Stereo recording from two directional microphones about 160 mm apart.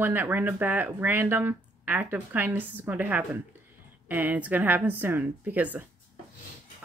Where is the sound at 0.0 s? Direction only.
15° right (ahead or behind).